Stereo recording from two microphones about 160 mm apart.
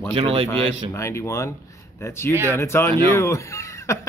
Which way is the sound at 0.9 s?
20° left (ahead or behind).